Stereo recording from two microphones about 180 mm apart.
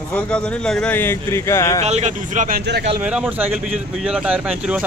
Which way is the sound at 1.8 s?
35° right (ahead or behind).